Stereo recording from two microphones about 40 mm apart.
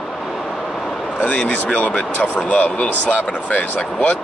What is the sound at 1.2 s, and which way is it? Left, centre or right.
Speech, left.